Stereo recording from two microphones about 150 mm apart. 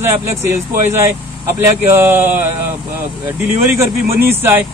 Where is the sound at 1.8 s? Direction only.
15° right (ahead or behind).